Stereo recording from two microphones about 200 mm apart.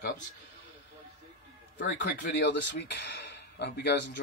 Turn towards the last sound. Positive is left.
turn(degrees=55)  # may be behind; listen again after turning